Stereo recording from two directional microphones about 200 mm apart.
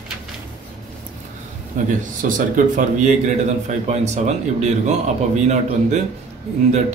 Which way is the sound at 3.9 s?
35° right (ahead or behind).